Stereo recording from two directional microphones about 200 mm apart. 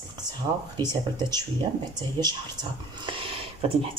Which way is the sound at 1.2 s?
20° right (ahead or behind).